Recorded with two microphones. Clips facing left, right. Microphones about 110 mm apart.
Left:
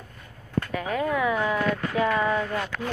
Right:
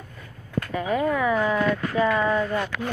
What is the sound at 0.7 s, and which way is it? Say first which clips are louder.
Speech: right 3 dB; centre (ahead or behind).